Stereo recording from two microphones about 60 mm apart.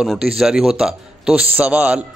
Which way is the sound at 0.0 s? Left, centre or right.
Centre.